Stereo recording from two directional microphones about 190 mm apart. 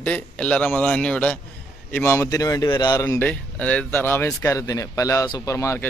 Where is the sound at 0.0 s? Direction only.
5° left (ahead or behind).